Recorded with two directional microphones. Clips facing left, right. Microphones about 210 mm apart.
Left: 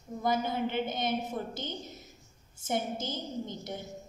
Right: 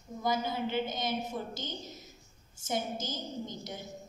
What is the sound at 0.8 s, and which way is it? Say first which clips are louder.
Speech: left 2 dB; 55° left (ahead or behind).